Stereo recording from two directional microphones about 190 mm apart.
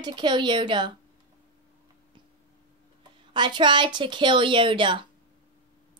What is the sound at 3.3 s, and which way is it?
A woman's voice, 25° right (ahead or behind).